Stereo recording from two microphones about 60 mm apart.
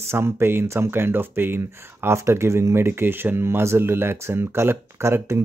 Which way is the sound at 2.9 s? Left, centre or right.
Right.